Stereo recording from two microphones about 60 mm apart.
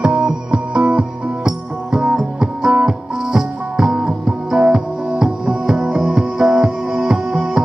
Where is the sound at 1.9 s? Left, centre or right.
Centre.